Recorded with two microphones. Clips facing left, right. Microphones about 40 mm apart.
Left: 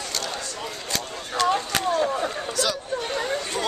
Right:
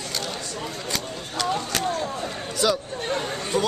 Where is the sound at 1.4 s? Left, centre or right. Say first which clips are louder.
Left 4 dB; centre.